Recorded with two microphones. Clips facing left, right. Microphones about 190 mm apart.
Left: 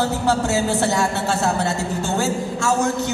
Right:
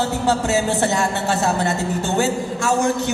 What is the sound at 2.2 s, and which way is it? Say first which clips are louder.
Speech: right 2 dB; 15° right (ahead or behind).